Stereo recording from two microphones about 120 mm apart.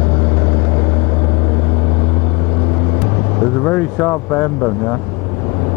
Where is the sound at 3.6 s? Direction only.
15° left (ahead or behind).